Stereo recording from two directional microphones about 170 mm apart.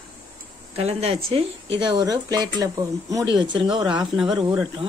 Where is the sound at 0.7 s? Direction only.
35° right (ahead or behind).